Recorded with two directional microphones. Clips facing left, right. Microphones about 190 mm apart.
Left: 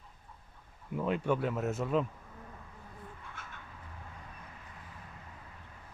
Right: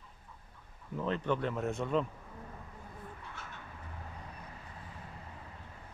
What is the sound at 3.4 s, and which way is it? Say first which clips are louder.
Bird: right 1 dB; 50° left (ahead or behind).